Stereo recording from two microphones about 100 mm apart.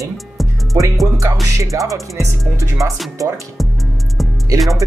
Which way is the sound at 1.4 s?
30° right (ahead or behind).